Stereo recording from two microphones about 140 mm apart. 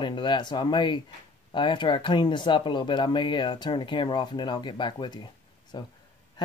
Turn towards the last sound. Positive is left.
turn(degrees=30)  # may be behind; listen again after turning